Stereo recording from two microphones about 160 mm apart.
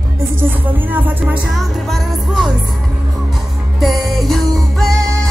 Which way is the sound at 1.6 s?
Centre (ahead or behind).